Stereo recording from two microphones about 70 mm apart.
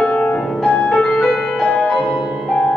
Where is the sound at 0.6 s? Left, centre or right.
Centre.